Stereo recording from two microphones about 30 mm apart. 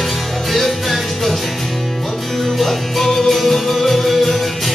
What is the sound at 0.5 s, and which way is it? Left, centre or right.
Music, centre.